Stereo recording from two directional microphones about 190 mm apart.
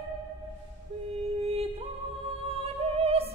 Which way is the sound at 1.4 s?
30° right (ahead or behind).